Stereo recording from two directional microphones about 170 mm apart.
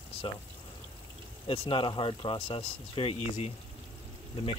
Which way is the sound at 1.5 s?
35° left (ahead or behind).